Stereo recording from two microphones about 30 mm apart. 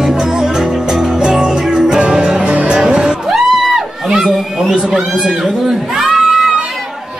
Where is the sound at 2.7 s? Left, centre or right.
Right.